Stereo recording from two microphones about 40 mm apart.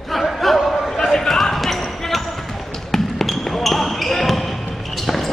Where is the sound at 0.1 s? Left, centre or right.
Centre.